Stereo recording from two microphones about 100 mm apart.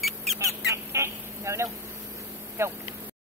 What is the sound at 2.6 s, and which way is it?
Speech, 25° right (ahead or behind).